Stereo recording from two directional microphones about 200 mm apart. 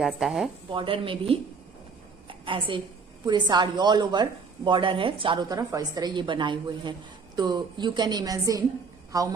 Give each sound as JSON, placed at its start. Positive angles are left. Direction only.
{"t": 0.0, "sound": "speech", "side_deg": 0}
{"t": 0.7, "sound": "speech", "side_deg": -25}
{"t": 2.2, "sound": "a sound", "side_deg": -25}
{"t": 3.3, "sound": "speech", "side_deg": -20}